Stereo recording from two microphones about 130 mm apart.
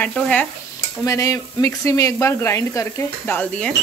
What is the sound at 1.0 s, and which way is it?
Speech, 25° left (ahead or behind).